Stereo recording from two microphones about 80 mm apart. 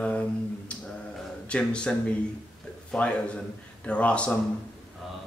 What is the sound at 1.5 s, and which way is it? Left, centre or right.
Speech, centre.